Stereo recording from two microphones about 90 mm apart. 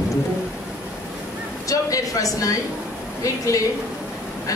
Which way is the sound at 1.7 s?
40° left (ahead or behind).